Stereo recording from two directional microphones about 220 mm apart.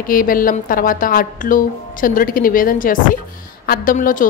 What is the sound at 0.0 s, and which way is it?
A woman's voice, 40° left (ahead or behind).